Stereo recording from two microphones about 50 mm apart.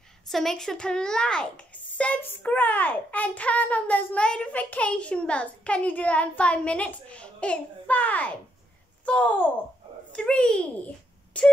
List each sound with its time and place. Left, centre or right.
0.3 s a child's voice: centre; by 4.0 s left
4.1 s a child's voice: left
10.1 s a child's voice: centre